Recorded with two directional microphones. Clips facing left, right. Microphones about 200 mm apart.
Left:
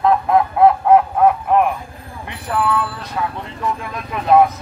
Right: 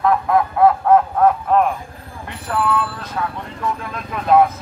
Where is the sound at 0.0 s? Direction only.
20° left (ahead or behind).